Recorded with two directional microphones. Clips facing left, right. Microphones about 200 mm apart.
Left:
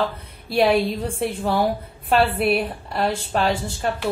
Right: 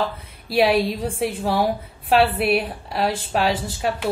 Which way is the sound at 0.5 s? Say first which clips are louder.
Even; 5° right (ahead or behind).